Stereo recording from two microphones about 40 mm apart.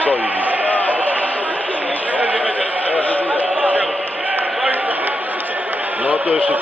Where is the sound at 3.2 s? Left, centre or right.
Right.